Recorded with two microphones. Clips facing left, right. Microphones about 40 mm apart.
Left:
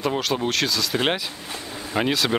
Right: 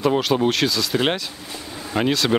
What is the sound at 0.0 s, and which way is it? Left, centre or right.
Speech, centre.